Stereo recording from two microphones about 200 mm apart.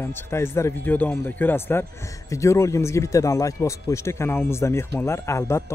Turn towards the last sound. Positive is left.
turn(degrees=15)  # may be behind; listen again after turning